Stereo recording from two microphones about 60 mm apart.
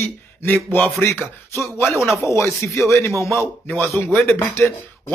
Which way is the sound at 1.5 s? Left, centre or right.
Left.